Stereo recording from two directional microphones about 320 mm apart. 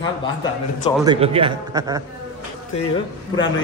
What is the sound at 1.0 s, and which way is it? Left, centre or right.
A man's voice, centre.